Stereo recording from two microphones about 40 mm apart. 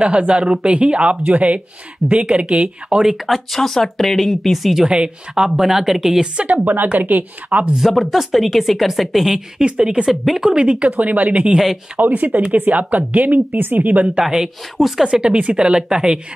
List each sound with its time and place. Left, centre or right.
0.0 s a woman's voice: right
3.3 s speech: centre
3.6 s speech: centre
4.8 s speech: right
5.3 s speech: centre
6.3 s a woman's voice: right
7.8 s speech: centre
9.6 s speech: right
10.9 s a woman's voice: right
11.5 s speech: centre
12.1 s a woman's voice: right
14.3 s speech: centre